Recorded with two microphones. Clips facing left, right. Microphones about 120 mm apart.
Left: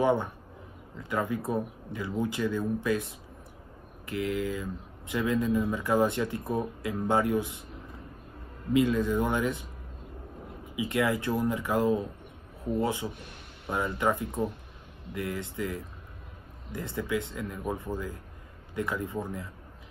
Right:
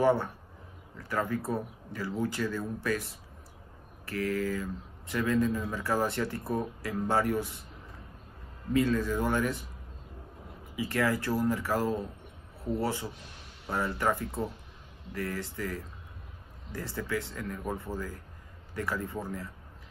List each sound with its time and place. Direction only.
0.0 s speech: 15° left (ahead or behind)
8.7 s speech: 15° left (ahead or behind)
10.8 s speech: 20° left (ahead or behind)